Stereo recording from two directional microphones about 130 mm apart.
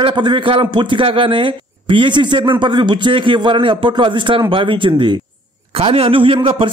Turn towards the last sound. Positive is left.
turn(degrees=-45)  # may be behind; listen again after turning